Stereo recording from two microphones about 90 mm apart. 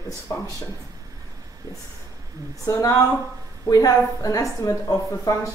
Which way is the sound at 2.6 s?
35° left (ahead or behind).